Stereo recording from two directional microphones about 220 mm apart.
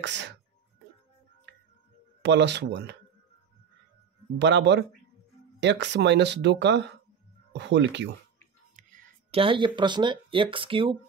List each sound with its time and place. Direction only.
0.0 s speech: 55° right (ahead or behind)
2.2 s speech: 50° right (ahead or behind)
4.4 s speech: 50° right (ahead or behind)
9.3 s speech: 25° right (ahead or behind)